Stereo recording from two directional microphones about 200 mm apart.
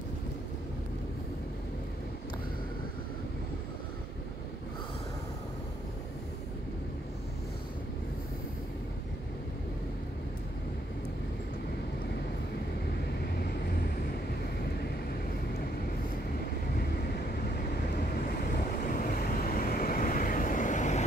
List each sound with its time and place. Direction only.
19.0 s vehicle: 45° left (ahead or behind)